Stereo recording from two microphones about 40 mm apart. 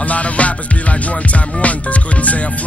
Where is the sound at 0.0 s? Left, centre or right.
Left.